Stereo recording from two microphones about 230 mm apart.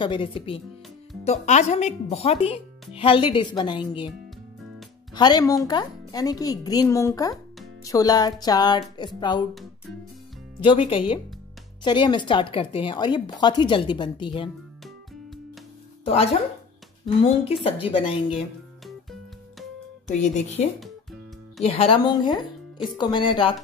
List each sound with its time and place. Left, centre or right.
0.0 s speech: left
5.1 s speech: centre
10.6 s speech: left
16.0 s speech: left
20.1 s speech: left
21.6 s speech: left